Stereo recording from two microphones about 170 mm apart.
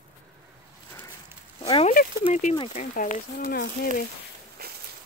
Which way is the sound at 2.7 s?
50° left (ahead or behind).